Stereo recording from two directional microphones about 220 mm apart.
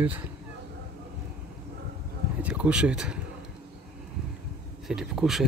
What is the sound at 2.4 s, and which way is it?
Speech, 5° right (ahead or behind).